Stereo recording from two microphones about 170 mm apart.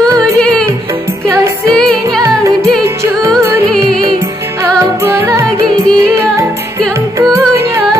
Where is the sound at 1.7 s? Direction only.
Centre (ahead or behind).